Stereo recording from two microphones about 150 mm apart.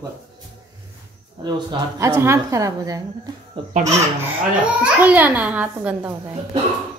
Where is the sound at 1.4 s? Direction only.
25° right (ahead or behind).